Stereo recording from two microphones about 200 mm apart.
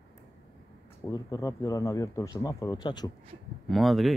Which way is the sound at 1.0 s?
15° left (ahead or behind).